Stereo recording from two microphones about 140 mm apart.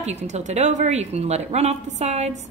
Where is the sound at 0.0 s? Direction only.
55° right (ahead or behind).